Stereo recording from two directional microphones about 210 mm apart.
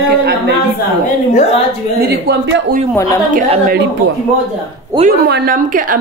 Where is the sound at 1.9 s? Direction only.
50° right (ahead or behind).